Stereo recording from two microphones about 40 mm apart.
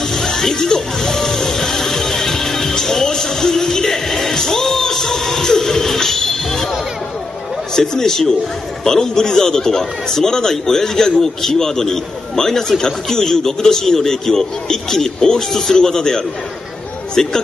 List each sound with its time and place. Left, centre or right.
0.0 s music: centre
7.7 s a man's voice: centre